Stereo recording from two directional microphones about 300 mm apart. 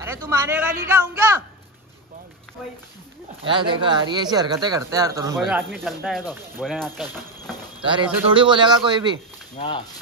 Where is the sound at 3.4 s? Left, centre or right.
Centre.